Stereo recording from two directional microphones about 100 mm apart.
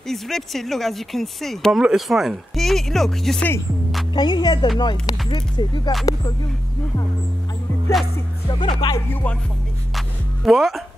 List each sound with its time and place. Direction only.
0.1 s speech: 5° left (ahead or behind)
4.1 s speech: 50° left (ahead or behind)
8.5 s speech: 50° left (ahead or behind)
8.9 s music: 15° left (ahead or behind)
9.9 s music: centre (ahead or behind)